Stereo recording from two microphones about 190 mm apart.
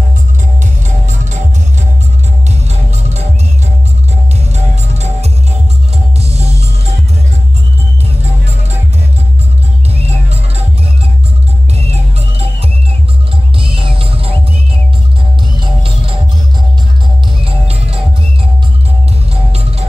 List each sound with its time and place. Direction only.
0.8 s music: 40° right (ahead or behind)
2.5 s music: 35° right (ahead or behind)
4.4 s music: 35° right (ahead or behind)
10.0 s music: 35° right (ahead or behind)
11.7 s music: 35° right (ahead or behind)
15.4 s music: 25° right (ahead or behind)
17.5 s music: 30° right (ahead or behind)